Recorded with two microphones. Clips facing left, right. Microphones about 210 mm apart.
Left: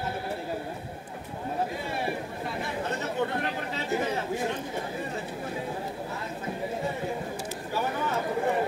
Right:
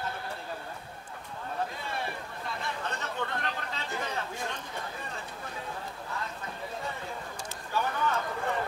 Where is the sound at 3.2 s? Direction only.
10° left (ahead or behind).